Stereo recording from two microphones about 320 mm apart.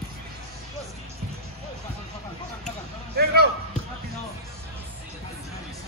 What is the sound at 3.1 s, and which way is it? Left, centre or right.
Basketball bounce, right.